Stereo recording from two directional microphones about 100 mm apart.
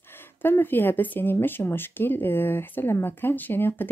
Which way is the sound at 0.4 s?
20° left (ahead or behind).